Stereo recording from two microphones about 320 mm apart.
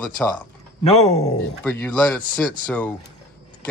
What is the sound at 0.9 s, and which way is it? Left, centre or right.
Speech, centre.